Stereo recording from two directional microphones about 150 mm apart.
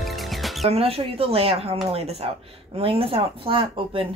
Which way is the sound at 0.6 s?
40° right (ahead or behind).